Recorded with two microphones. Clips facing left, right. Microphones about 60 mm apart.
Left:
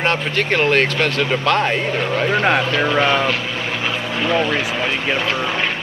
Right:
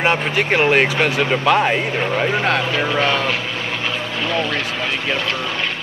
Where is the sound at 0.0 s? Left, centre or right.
Centre.